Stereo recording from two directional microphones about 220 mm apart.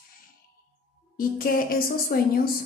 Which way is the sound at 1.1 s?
40° left (ahead or behind).